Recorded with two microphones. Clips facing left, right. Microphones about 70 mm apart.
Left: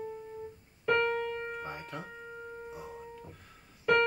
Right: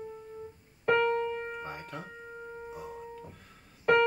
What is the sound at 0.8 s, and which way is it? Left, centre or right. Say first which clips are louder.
Keyboard: right 2 dB; centre.